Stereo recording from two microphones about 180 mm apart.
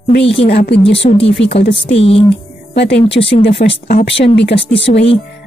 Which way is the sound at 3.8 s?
50° left (ahead or behind).